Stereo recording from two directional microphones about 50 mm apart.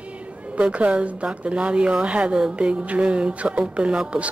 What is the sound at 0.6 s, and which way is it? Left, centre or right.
A woman's voice, right.